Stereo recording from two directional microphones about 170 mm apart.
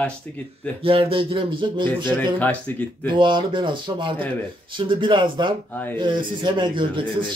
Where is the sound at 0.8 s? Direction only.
30° right (ahead or behind).